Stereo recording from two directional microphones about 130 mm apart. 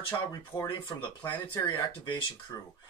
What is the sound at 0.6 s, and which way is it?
Speech, 35° left (ahead or behind).